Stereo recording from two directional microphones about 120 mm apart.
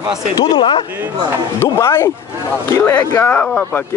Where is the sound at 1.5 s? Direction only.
20° left (ahead or behind).